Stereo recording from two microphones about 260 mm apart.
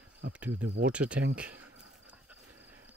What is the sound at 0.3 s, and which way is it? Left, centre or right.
Speech, centre.